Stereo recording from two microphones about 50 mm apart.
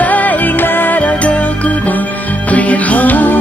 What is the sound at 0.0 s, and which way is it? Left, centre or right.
Music, left.